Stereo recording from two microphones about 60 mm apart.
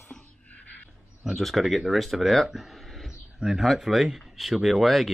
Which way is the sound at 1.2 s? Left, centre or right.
Centre.